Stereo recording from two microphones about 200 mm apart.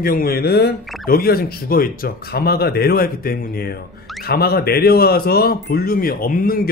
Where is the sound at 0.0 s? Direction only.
45° left (ahead or behind).